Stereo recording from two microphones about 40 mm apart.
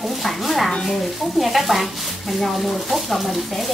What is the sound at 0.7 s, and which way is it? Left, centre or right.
Speech, centre.